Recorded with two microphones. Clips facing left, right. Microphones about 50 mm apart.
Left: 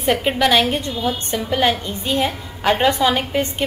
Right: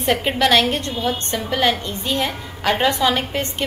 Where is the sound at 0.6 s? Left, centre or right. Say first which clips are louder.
Even; centre.